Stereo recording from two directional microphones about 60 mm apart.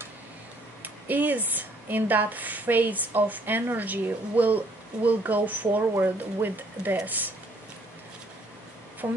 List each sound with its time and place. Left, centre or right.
0.8 s a woman's voice: right
9.0 s speech: right